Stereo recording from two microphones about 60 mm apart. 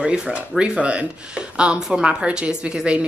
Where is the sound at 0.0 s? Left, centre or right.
Centre.